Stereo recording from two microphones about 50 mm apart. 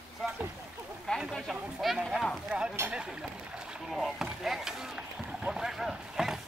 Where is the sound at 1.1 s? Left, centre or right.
Centre.